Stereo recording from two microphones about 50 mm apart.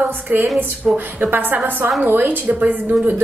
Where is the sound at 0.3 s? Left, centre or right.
Right.